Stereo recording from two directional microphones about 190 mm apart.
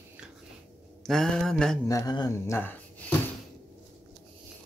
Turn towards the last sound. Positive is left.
turn(degrees=10)  # may be behind; listen again after turning